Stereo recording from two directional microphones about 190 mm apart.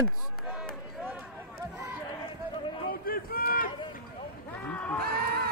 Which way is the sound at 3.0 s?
50° left (ahead or behind).